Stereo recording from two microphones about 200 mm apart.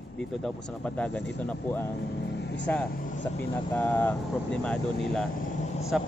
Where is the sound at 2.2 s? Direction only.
60° left (ahead or behind).